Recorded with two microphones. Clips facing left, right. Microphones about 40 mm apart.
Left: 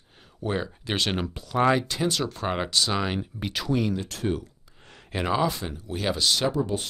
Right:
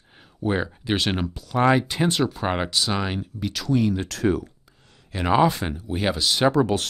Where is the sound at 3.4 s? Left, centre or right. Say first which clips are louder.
Right 4 dB; centre.